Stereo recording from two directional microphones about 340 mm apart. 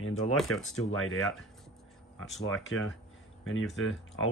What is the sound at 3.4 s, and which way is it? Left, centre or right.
Speech, left.